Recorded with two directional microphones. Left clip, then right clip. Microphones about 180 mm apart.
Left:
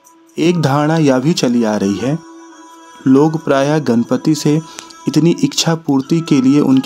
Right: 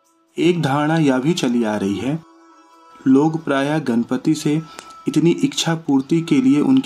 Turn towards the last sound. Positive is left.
turn(degrees=35)  # may be behind; listen again after turning